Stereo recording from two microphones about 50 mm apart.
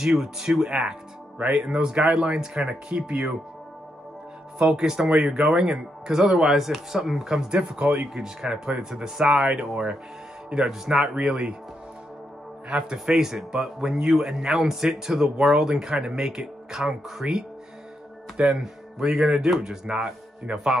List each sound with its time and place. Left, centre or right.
0.0 s speech: centre
2.9 s speech: right
4.6 s speech: centre
12.9 s speech: centre
20.5 s a man's voice: right